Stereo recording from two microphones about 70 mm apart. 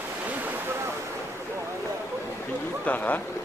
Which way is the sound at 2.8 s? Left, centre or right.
Left.